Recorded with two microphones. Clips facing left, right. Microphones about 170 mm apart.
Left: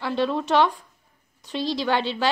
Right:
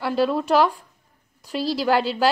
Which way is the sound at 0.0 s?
5° right (ahead or behind).